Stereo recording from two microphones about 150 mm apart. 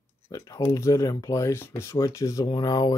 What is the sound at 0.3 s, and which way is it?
Speech, 20° left (ahead or behind).